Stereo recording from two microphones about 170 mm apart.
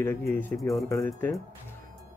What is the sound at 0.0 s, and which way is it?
Speech, 15° left (ahead or behind).